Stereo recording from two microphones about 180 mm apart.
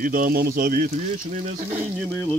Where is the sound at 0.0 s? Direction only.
50° right (ahead or behind).